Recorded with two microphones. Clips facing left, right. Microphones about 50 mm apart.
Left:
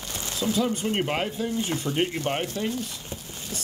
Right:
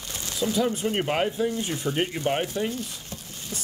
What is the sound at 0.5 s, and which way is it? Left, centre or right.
Speech, centre.